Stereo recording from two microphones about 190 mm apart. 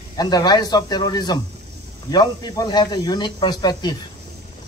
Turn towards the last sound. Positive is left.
turn(degrees=20)  # may be behind; listen again after turning